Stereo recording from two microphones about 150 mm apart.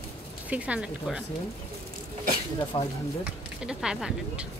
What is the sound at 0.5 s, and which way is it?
Speech, 10° right (ahead or behind).